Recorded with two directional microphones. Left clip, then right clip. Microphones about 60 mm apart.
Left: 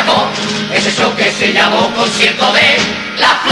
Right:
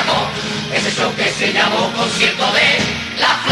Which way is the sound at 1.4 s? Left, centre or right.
Right.